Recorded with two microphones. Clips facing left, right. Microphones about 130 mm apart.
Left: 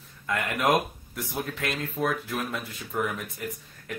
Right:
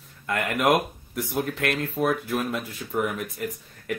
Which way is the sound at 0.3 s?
10° right (ahead or behind).